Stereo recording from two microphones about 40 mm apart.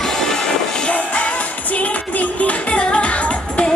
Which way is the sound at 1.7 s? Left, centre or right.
Left.